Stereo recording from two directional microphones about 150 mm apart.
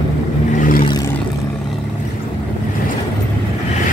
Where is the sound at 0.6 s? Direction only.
65° left (ahead or behind).